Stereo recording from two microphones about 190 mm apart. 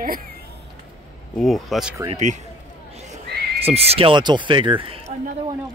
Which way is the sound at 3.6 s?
30° right (ahead or behind).